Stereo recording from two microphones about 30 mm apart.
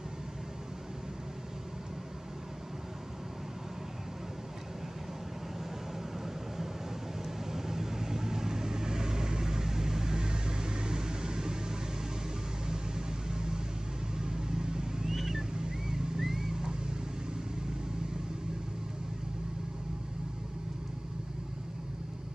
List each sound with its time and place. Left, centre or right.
7.5 s vehicle: centre
12.6 s vehicle: right
15.3 s boat: right
16.2 s boat: centre